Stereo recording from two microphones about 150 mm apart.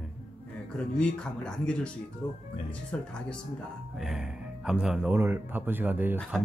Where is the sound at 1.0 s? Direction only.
5° left (ahead or behind).